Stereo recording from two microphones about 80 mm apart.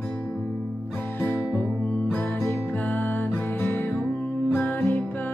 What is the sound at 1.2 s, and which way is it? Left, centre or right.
Music, left.